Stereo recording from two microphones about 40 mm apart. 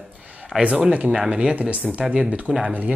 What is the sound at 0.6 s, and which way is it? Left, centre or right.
Speech, right.